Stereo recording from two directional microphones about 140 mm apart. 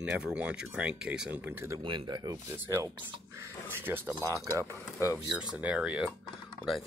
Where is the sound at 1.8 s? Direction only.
35° right (ahead or behind).